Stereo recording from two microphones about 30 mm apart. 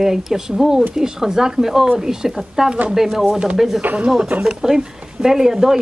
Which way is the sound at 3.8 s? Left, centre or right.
Right.